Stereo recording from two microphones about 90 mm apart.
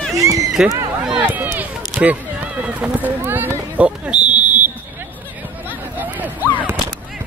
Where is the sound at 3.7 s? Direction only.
15° right (ahead or behind).